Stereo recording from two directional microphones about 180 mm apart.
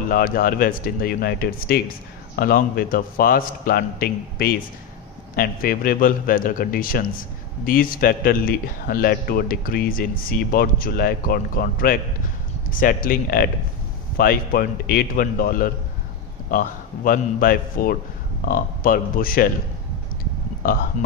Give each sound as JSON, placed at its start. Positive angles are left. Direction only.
{"t": 0.1, "sound": "a man's voice", "side_deg": 55}
{"t": 20.6, "sound": "a man's voice", "side_deg": 50}